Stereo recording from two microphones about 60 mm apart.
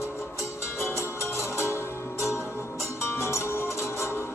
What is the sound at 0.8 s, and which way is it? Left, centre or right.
Music, left.